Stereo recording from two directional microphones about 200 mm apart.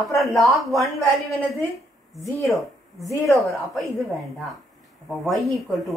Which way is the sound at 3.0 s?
15° left (ahead or behind).